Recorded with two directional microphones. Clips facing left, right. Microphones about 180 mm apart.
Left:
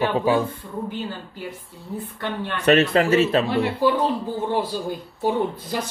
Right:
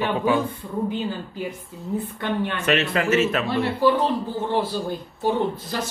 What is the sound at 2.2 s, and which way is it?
Speech, 15° right (ahead or behind).